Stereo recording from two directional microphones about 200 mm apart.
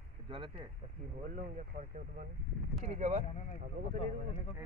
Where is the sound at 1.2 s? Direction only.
45° right (ahead or behind).